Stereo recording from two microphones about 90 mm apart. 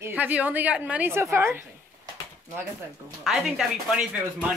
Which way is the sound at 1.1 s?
25° right (ahead or behind).